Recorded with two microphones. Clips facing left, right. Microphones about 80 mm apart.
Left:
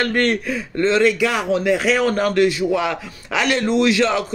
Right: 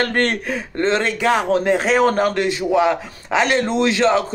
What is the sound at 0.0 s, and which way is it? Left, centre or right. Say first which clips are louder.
Speech: left 1 dB; right.